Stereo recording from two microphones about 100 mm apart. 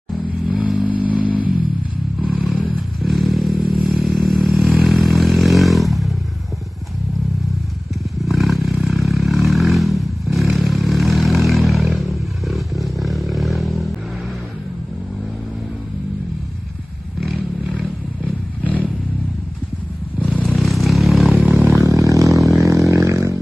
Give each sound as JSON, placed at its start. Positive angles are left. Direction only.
{"t": 0.8, "sound": "vehicle", "side_deg": -15}
{"t": 2.2, "sound": "vehicle", "side_deg": 0}
{"t": 8.3, "sound": "vehicle", "side_deg": 0}
{"t": 17.2, "sound": "roaring cats", "side_deg": -5}
{"t": 20.4, "sound": "vehicle", "side_deg": 0}
{"t": 21.7, "sound": "a sound", "side_deg": -35}